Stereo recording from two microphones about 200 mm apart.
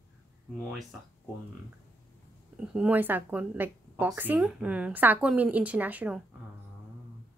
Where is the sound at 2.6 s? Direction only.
5° right (ahead or behind).